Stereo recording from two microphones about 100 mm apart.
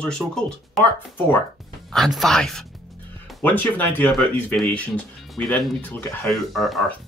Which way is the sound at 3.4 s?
15° left (ahead or behind).